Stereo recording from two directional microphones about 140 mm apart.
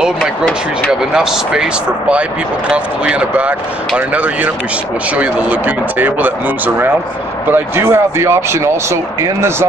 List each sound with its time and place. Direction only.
1.1 s speech: 5° right (ahead or behind)